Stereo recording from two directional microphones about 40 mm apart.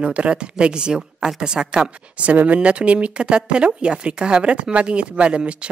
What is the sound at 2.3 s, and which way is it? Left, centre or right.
Speech, right.